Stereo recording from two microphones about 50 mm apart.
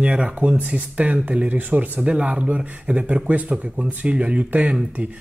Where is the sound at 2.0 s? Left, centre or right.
Right.